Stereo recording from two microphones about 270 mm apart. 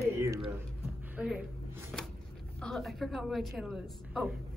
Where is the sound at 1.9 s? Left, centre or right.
Centre.